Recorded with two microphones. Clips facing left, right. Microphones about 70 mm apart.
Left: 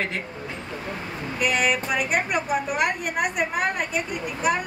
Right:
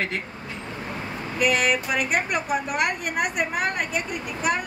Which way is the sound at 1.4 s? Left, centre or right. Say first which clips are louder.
Right 1 dB; centre.